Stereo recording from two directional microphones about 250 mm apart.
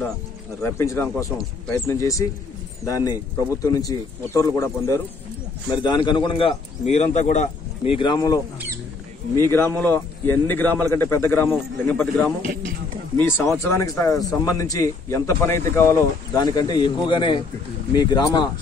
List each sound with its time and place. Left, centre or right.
0.6 s a man's voice: centre
12.4 s speech: right
13.6 s speech: centre